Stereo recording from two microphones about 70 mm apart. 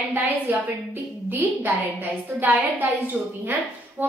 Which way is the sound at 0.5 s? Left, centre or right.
Right.